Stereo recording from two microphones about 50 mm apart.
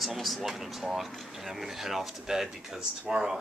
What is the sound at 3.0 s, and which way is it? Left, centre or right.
Speech, centre.